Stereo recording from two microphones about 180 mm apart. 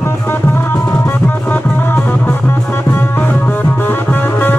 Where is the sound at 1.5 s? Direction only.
10° left (ahead or behind).